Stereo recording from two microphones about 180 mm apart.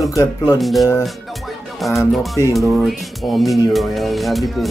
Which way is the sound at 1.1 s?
Centre (ahead or behind).